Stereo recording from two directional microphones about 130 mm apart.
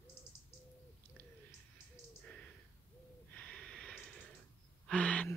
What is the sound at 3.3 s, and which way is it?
Snort, 10° left (ahead or behind).